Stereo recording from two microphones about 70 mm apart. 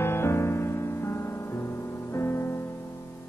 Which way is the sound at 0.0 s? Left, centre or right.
Left.